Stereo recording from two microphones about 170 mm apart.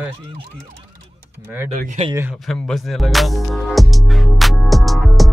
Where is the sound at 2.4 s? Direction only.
5° left (ahead or behind).